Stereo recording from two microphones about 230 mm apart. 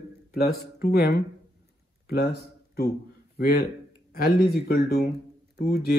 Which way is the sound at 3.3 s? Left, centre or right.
Left.